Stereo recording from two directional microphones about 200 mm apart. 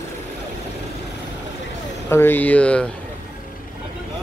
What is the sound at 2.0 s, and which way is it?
Speech, 10° left (ahead or behind).